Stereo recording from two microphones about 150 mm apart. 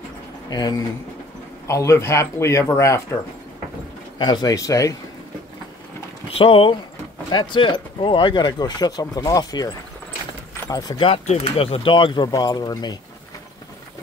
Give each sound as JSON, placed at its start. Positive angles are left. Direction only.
{"t": 0.5, "sound": "speech", "side_deg": 25}
{"t": 4.2, "sound": "speech", "side_deg": 30}
{"t": 6.3, "sound": "speech", "side_deg": 40}
{"t": 10.7, "sound": "speech", "side_deg": 25}
{"t": 11.1, "sound": "speech", "side_deg": 40}